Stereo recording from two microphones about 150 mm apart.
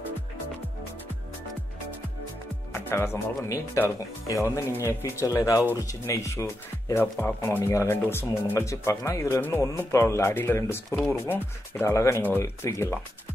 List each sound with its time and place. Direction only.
2.7 s speech: 15° left (ahead or behind)